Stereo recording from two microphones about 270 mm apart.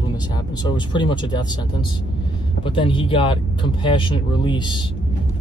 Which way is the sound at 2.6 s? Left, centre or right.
Centre.